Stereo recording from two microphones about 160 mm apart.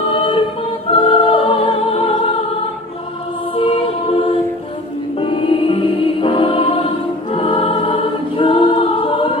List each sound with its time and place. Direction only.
0.1 s choir: 35° left (ahead or behind)
0.8 s music: 35° left (ahead or behind)
3.5 s choir: 35° left (ahead or behind)
5.1 s music: 35° left (ahead or behind)